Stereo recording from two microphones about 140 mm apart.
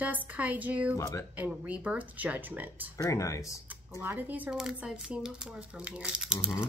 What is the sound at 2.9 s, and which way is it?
Speech, 25° left (ahead or behind).